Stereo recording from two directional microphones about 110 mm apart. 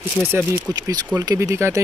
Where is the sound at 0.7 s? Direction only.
35° right (ahead or behind).